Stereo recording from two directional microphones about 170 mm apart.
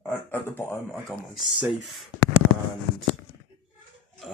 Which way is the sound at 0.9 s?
Centre (ahead or behind).